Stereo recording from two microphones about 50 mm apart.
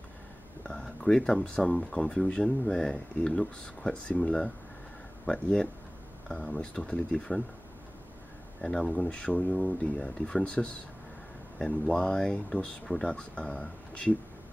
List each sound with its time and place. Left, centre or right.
0.7 s speech: centre
8.5 s speech: centre
8.9 s speech: left